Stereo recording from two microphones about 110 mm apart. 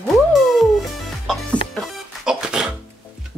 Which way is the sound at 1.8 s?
5° right (ahead or behind).